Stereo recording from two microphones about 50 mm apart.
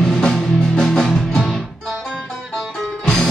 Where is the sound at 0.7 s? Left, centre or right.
Centre.